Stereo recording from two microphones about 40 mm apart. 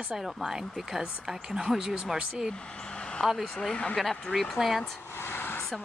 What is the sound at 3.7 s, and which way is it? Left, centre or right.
Speech, left.